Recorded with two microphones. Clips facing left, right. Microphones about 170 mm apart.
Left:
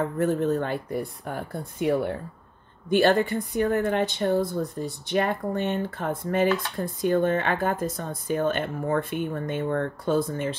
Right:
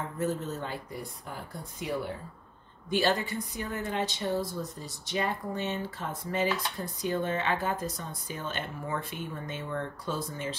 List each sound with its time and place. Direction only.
0.0 s speech: 60° left (ahead or behind)